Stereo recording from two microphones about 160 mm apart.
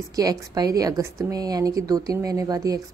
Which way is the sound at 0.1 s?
25° right (ahead or behind).